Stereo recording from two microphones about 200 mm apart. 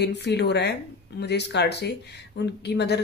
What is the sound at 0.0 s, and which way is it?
Speech, 55° left (ahead or behind).